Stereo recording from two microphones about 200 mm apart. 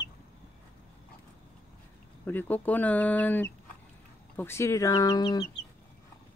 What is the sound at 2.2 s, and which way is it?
Speech, 10° left (ahead or behind).